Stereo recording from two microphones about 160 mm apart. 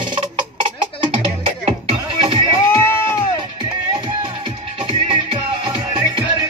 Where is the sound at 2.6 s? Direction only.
15° left (ahead or behind).